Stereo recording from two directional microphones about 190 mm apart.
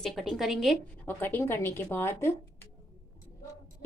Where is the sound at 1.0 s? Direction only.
10° left (ahead or behind).